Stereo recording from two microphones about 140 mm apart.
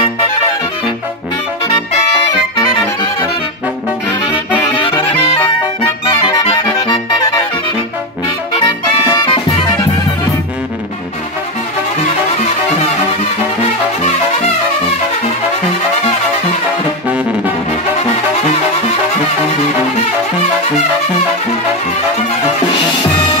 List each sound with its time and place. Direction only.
4.7 s music: 35° left (ahead or behind)
6.3 s accordion: 30° left (ahead or behind)
8.6 s music: 30° left (ahead or behind)